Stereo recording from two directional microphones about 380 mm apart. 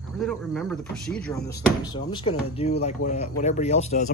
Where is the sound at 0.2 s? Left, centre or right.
Centre.